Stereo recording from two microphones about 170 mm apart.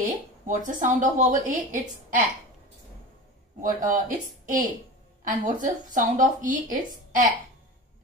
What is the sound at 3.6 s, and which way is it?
A woman's voice, 50° right (ahead or behind).